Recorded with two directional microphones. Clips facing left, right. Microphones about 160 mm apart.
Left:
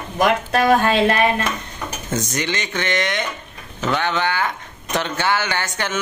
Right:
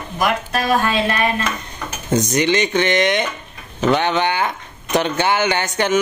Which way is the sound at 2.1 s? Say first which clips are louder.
Right 8 dB; 15° right (ahead or behind).